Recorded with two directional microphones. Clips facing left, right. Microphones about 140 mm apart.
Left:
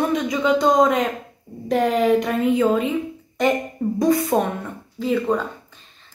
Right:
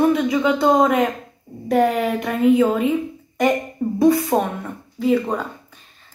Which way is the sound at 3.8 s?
10° right (ahead or behind).